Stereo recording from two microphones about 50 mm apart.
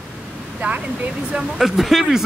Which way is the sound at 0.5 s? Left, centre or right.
Right.